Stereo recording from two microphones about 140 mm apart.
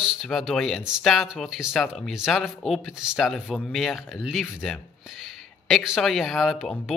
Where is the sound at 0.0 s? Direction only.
5° right (ahead or behind).